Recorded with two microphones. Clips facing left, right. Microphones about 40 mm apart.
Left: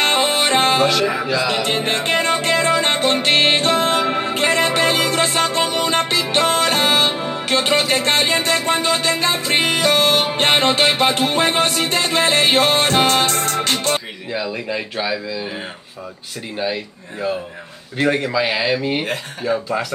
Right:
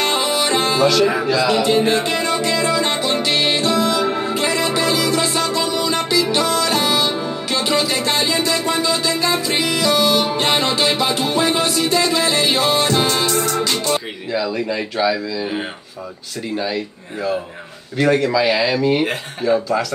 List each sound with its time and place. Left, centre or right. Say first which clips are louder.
0.0 s music: left 2 dB; left
1.0 s speech: right 3 dB; centre
1.6 s music: right 4 dB; left
14.3 s speech: right 3 dB; centre
16.5 s speech: even; centre